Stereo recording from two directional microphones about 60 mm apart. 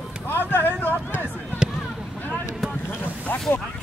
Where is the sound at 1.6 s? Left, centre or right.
Centre.